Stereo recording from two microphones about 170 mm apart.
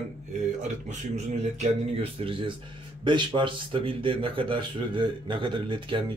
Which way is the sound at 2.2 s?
35° right (ahead or behind).